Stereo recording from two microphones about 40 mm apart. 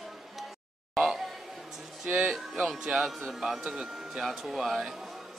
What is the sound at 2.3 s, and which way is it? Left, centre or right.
Speech, centre.